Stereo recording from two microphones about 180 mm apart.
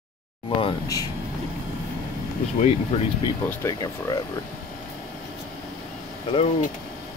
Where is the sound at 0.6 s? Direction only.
25° left (ahead or behind).